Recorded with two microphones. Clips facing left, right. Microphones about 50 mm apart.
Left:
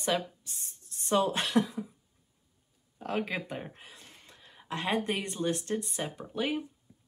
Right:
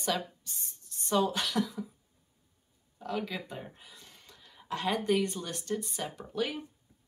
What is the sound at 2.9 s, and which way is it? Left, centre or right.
A woman's voice, left.